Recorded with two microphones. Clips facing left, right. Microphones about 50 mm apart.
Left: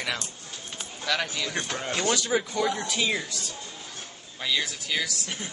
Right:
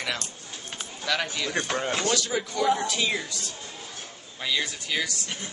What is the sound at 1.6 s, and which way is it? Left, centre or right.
Speech, right.